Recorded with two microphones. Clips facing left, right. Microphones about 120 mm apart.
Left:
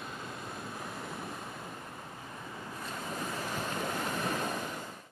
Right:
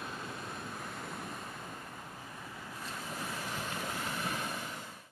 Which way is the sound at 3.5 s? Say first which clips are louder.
Left 6 dB; 40° left (ahead or behind).